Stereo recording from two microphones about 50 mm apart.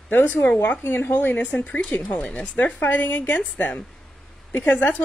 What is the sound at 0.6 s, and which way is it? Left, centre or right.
Speech, left.